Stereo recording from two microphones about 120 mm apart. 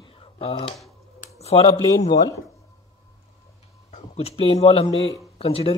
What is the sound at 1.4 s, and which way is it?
Speech, 55° left (ahead or behind).